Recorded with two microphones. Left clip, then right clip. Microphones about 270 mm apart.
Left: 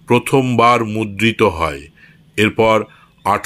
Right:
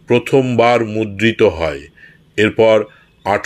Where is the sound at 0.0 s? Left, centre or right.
Centre.